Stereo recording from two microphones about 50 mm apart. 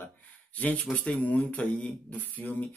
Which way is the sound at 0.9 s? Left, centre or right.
Left.